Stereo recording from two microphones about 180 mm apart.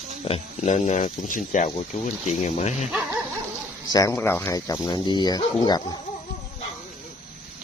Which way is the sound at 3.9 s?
15° left (ahead or behind).